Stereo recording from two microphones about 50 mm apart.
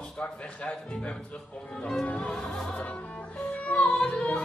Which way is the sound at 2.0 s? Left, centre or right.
Left.